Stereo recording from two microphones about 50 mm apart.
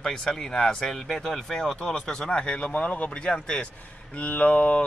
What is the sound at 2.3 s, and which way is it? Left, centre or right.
Speech, left.